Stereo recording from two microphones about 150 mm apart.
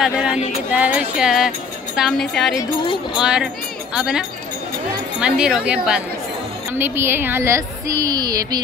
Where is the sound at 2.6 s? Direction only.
30° left (ahead or behind).